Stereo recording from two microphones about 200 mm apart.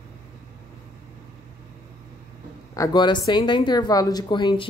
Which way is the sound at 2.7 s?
20° left (ahead or behind).